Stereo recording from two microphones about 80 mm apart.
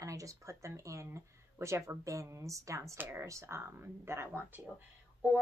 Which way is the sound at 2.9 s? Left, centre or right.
Right.